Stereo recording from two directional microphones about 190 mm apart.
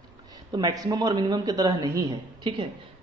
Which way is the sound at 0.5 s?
20° right (ahead or behind).